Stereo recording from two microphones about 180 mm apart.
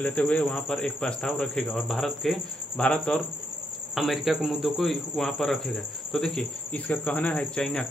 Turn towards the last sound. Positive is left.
turn(degrees=5)  # may be behind; listen again after turning